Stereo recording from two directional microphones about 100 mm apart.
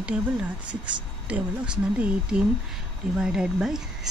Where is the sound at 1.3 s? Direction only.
15° right (ahead or behind).